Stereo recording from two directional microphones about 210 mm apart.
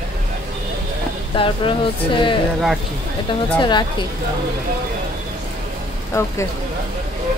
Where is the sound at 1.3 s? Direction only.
25° left (ahead or behind).